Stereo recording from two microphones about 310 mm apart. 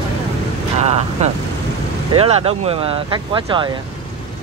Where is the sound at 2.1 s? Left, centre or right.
Centre.